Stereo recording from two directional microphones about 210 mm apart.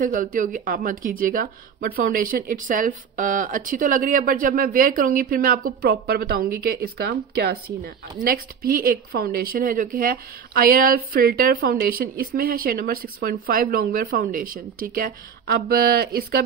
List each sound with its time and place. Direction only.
0.0 s speech: 40° right (ahead or behind)